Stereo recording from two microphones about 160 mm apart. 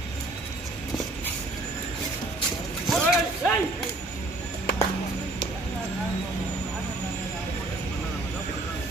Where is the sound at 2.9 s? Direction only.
Centre (ahead or behind).